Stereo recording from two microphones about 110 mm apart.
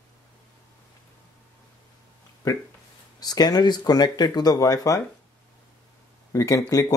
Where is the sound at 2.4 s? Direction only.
35° left (ahead or behind).